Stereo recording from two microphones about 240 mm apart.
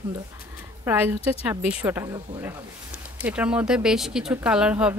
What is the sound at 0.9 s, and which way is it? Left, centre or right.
Speech, centre.